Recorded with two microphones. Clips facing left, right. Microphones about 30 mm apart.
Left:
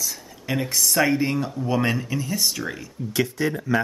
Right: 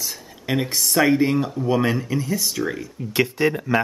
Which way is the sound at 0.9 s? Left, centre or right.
Centre.